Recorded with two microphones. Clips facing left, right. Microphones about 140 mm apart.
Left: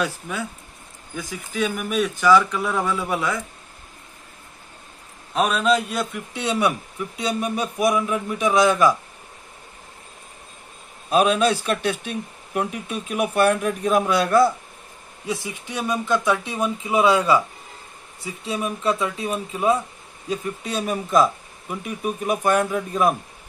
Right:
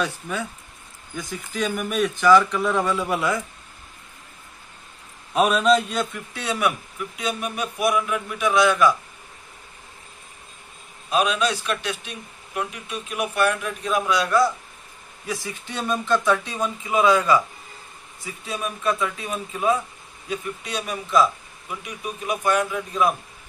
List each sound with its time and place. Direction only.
0.0 s speech: 5° left (ahead or behind)
5.3 s speech: centre (ahead or behind)
6.4 s speech: 25° left (ahead or behind)
11.1 s speech: 45° left (ahead or behind)
12.7 s speech: 35° left (ahead or behind)
13.2 s speech: 50° left (ahead or behind)
15.4 s speech: 15° left (ahead or behind)
18.4 s speech: 30° left (ahead or behind)
20.2 s speech: 40° left (ahead or behind)